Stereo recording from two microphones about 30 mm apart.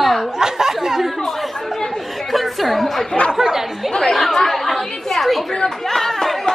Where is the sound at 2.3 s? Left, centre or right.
Centre.